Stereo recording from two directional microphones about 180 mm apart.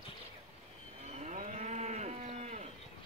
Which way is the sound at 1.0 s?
40° right (ahead or behind).